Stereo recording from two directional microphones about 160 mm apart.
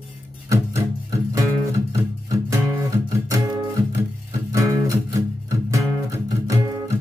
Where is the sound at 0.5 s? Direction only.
20° right (ahead or behind).